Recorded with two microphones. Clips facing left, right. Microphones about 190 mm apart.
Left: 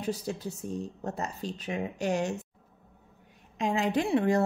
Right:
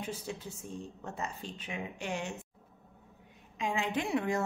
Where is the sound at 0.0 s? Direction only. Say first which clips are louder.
Left 7 dB; 40° left (ahead or behind).